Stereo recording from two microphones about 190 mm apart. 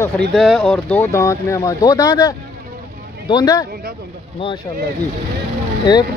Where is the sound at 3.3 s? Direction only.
20° left (ahead or behind).